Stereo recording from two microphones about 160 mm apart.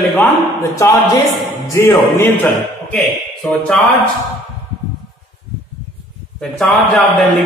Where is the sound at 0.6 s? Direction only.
20° left (ahead or behind).